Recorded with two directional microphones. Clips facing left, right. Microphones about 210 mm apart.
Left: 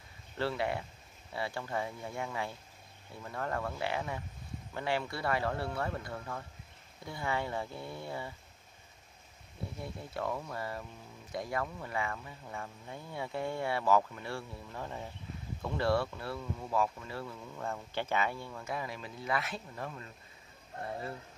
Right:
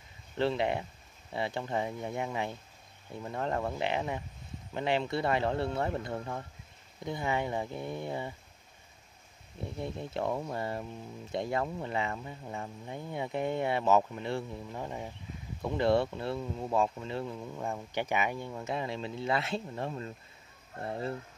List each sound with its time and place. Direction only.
0.4 s speech: 20° right (ahead or behind)
9.8 s speech: 20° right (ahead or behind)